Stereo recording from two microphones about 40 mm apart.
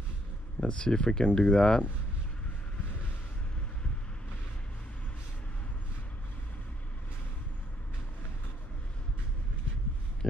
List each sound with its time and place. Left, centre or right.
0.6 s speech: left